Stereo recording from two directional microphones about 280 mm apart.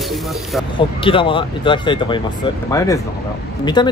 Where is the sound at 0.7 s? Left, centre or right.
Centre.